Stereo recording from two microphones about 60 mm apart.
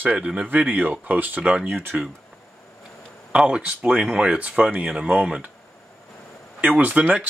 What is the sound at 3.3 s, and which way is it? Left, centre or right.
Speech, centre.